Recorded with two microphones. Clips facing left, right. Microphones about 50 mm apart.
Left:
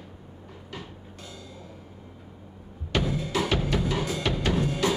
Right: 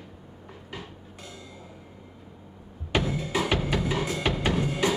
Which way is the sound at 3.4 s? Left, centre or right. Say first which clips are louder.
Even; centre.